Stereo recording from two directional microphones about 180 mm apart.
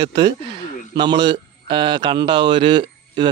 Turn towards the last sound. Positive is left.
turn(degrees=-25)  # may be behind; listen again after turning